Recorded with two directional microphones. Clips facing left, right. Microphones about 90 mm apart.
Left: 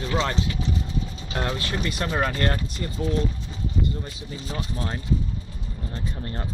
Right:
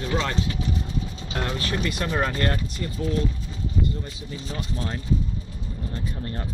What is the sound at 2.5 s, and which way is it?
Speech, 20° left (ahead or behind).